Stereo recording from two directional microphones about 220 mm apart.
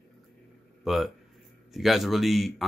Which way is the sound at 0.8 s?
Centre (ahead or behind).